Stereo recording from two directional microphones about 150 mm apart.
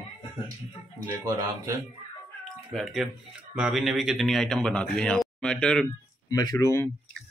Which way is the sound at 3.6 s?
Centre (ahead or behind).